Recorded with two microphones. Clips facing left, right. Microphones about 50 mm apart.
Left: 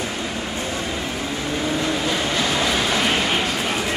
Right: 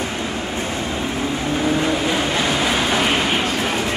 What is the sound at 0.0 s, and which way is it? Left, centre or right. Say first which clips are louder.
Vehicle: right 2 dB; right.